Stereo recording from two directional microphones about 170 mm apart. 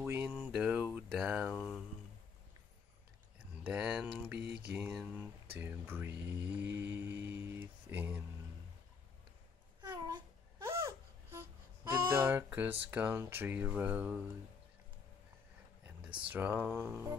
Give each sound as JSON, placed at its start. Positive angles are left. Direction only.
{"t": 0.0, "sound": "speech", "side_deg": -15}
{"t": 3.6, "sound": "speech", "side_deg": -5}
{"t": 6.7, "sound": "mantra", "side_deg": -10}
{"t": 7.3, "sound": "a sound", "side_deg": -10}
{"t": 9.8, "sound": "babbling", "side_deg": -25}
{"t": 10.6, "sound": "baby cry", "side_deg": -15}
{"t": 11.9, "sound": "speech", "side_deg": -15}
{"t": 16.3, "sound": "speech", "side_deg": -10}